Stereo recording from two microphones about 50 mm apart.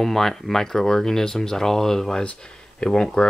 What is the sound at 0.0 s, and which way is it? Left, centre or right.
Speech, centre.